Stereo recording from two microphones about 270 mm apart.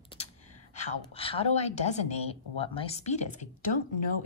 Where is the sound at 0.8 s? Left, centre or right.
Left.